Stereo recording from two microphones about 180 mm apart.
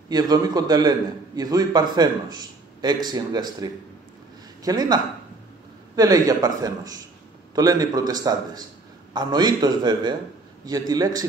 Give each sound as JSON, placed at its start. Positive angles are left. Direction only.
{"t": 0.1, "sound": "a man's voice", "side_deg": -20}